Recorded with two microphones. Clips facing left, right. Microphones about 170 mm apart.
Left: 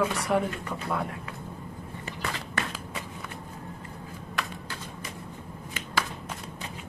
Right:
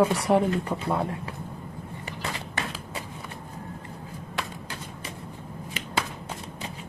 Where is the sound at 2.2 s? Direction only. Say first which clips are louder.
Even; 25° right (ahead or behind).